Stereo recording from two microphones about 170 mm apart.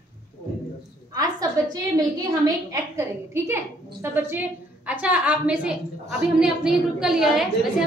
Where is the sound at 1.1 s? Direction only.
20° right (ahead or behind).